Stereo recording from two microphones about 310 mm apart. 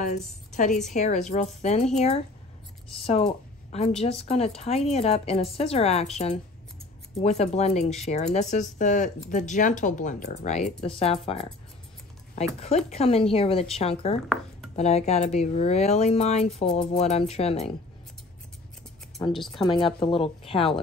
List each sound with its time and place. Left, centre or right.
0.9 s speech: left
12.5 s speech: left
19.5 s speech: centre